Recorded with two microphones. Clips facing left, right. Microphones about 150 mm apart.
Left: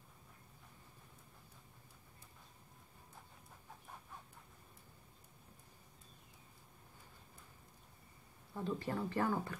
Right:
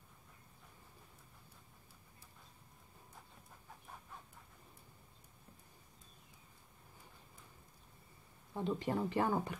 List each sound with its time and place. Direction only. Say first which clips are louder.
8.5 s speech: right 3 dB; 20° right (ahead or behind)